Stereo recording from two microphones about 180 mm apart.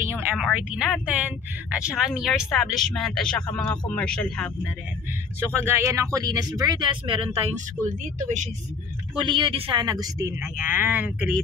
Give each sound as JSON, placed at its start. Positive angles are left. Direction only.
{"t": 0.0, "sound": "speech", "side_deg": -10}
{"t": 5.7, "sound": "speech", "side_deg": -15}
{"t": 9.2, "sound": "speech", "side_deg": -25}